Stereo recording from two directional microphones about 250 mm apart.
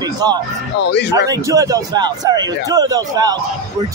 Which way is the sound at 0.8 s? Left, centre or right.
Left.